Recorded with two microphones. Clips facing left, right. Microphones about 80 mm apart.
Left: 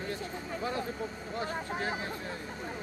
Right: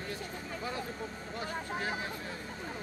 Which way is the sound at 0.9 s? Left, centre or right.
Centre.